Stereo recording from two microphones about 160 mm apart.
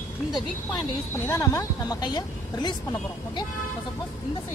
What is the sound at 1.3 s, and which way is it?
A woman's voice, 20° left (ahead or behind).